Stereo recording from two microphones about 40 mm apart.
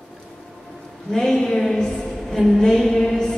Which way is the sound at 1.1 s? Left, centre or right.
Centre.